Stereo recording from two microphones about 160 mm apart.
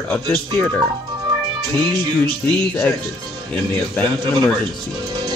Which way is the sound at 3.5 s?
10° left (ahead or behind).